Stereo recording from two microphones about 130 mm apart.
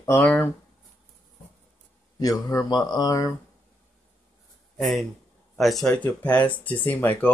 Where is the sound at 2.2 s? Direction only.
30° left (ahead or behind).